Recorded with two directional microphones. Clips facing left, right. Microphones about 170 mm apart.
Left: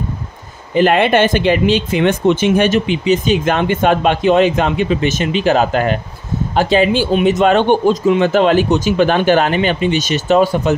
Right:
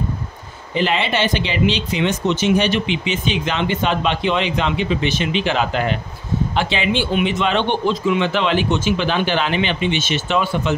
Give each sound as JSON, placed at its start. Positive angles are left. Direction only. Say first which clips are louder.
{"t": 0.7, "sound": "speech", "louder": "left 8 dB", "side_deg": 50}